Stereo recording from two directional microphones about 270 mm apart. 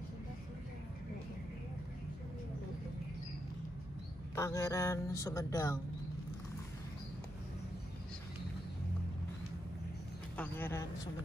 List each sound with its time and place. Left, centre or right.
4.4 s speech: centre
10.3 s a man's voice: centre